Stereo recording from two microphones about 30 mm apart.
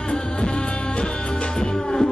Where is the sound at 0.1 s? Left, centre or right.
Left.